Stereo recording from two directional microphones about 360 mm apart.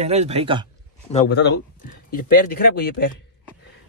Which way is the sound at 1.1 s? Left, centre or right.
Left.